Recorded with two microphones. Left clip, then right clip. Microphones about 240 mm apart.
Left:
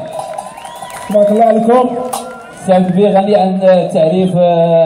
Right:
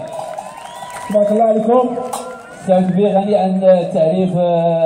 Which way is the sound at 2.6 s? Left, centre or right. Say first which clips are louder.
Left 4 dB; left.